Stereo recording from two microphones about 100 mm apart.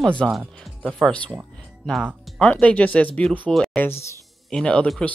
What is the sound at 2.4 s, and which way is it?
Speech, 15° left (ahead or behind).